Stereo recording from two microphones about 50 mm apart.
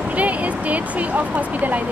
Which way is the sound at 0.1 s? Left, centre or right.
Right.